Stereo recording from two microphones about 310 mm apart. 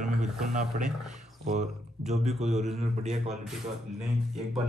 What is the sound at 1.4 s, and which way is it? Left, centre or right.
Speech, right.